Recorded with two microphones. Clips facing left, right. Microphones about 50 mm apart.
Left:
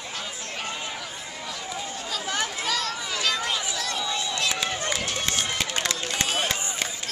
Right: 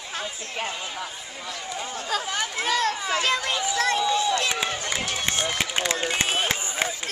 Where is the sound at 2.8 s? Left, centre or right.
Right.